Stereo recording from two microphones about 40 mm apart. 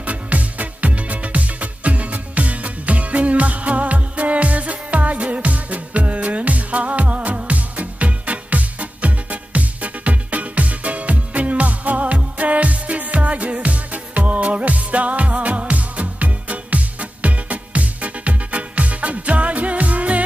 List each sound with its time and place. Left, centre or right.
0.0 s music: right